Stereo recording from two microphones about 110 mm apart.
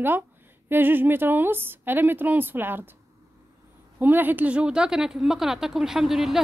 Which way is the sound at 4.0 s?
15° right (ahead or behind).